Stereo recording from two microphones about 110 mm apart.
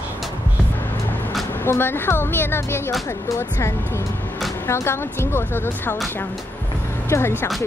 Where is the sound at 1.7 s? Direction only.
20° left (ahead or behind).